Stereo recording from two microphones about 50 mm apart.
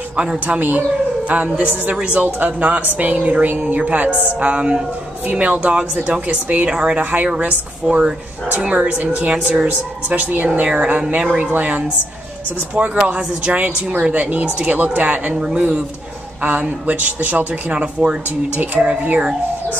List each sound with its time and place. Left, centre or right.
0.1 s speech: right
0.6 s speech: right
4.5 s speech: right
6.7 s speech: centre
12.7 s speech: centre
16.4 s speech: right
18.9 s speech: right